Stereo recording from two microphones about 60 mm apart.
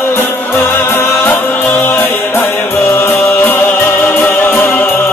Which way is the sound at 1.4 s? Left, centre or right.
Left.